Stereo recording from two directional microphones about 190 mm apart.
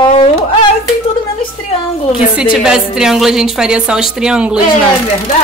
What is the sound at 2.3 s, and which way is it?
A woman's voice, 5° right (ahead or behind).